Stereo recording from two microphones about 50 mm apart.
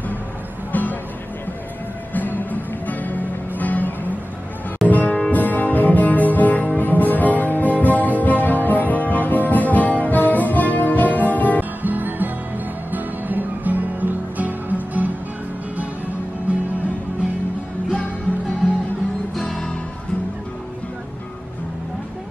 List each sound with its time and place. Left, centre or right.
0.7 s music: left
2.1 s music: left
11.8 s music: right
16.5 s music: right
19.3 s music: centre